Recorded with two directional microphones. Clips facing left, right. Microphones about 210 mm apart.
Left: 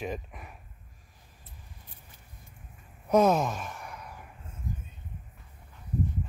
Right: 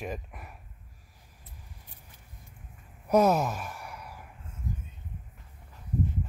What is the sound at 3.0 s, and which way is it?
Sigh, 5° right (ahead or behind).